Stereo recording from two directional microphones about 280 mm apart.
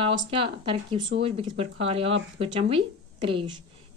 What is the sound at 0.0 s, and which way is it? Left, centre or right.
A woman's voice, centre.